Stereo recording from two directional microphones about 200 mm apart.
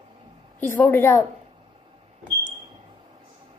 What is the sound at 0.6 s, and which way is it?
Speech, 10° left (ahead or behind).